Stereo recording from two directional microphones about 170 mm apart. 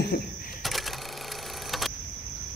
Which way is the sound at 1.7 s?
Centre (ahead or behind).